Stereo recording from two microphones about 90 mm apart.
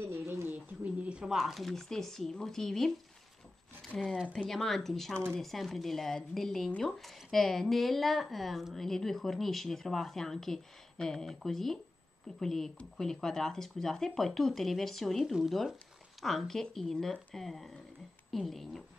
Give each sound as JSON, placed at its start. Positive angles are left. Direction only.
{"t": 0.1, "sound": "a sound", "side_deg": -25}
{"t": 1.0, "sound": "speech", "side_deg": -10}
{"t": 3.9, "sound": "speech", "side_deg": 5}